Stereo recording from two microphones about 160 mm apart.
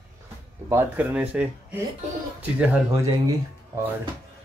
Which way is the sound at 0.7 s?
10° right (ahead or behind).